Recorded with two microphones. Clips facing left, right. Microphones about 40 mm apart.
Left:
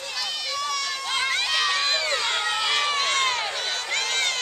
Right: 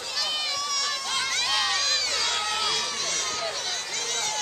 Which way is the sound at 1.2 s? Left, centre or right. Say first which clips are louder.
Left 3 dB; centre.